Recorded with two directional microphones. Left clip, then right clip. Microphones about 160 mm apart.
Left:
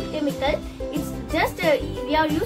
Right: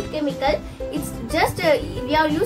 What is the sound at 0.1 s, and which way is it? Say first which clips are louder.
A child's voice: right 2 dB; centre (ahead or behind).